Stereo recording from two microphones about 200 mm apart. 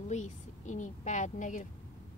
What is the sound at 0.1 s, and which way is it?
Speech, 35° left (ahead or behind).